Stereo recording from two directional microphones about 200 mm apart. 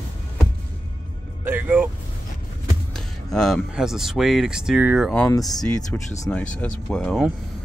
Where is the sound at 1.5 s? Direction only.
10° right (ahead or behind).